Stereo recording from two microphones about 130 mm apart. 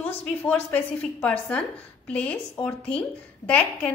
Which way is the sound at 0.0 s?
15° left (ahead or behind).